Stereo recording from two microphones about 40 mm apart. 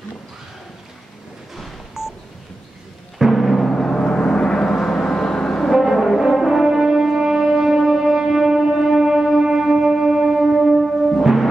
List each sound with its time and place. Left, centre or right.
3.2 s music: centre
3.9 s gong: centre
4.7 s vehicle: centre
5.7 s brass instrument: centre